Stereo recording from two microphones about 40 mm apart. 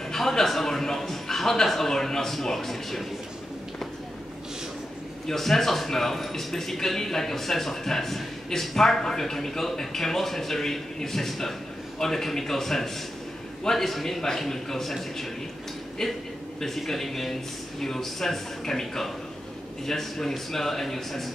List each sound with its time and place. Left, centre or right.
0.1 s a man's voice: centre
5.3 s speech: centre